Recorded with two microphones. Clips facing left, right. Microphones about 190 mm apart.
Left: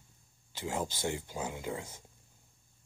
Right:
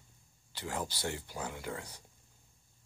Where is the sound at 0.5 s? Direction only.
15° left (ahead or behind).